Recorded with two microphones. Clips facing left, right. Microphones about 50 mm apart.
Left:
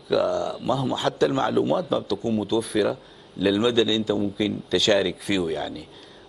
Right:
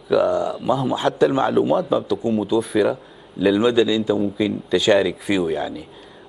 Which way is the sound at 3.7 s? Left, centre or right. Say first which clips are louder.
Right 4 dB; centre.